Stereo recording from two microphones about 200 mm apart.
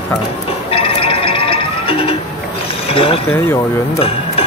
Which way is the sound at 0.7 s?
30° left (ahead or behind).